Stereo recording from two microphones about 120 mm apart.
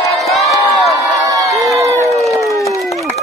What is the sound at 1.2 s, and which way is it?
Crowd, 30° right (ahead or behind).